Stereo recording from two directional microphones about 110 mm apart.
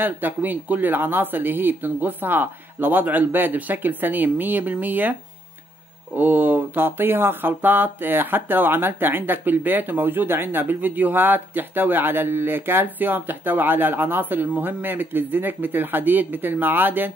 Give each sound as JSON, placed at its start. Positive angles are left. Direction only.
{"t": 0.0, "sound": "speech", "side_deg": -15}
{"t": 6.1, "sound": "speech", "side_deg": -15}